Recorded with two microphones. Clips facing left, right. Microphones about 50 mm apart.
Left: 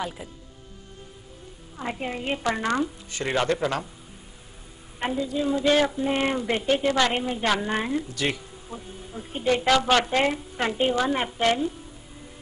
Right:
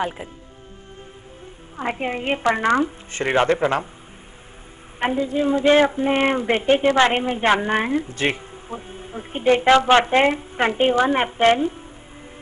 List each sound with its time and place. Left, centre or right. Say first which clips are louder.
1.8 s speech: right 6 dB; right
5.0 s speech: right 5 dB; right